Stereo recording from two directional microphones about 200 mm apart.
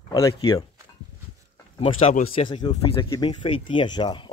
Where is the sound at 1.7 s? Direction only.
30° left (ahead or behind).